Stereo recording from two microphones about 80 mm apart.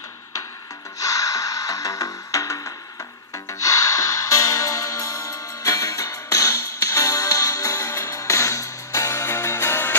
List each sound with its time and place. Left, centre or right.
0.9 s music: left